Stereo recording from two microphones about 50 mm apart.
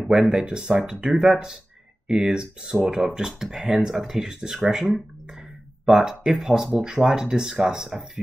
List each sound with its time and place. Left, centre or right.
0.1 s speech: centre
1.2 s speech: centre
2.0 s speech: centre